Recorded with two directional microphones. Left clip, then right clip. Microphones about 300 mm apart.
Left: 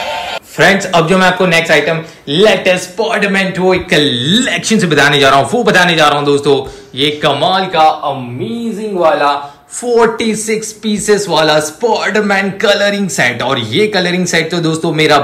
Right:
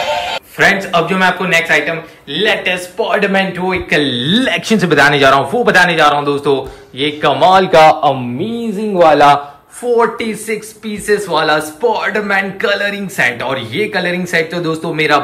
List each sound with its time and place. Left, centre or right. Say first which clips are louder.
0.0 s speech: right 2 dB; centre
3.0 s speech: left 1 dB; centre
7.7 s a man's voice: right 3 dB; right
9.8 s speech: left 2 dB; centre